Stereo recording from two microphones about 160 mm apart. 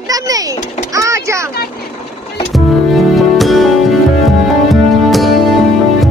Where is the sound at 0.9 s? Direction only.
20° right (ahead or behind).